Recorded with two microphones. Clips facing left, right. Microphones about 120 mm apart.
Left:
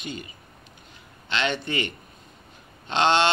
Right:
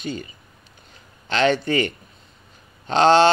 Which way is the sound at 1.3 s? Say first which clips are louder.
Right 8 dB; 40° right (ahead or behind).